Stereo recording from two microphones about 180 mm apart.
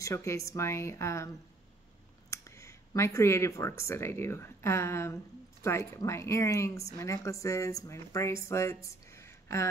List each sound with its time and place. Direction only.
0.0 s speech: 15° left (ahead or behind)
2.3 s speech: 15° left (ahead or behind)